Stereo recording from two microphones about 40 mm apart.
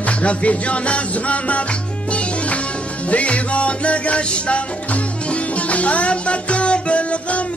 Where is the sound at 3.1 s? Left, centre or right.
Left.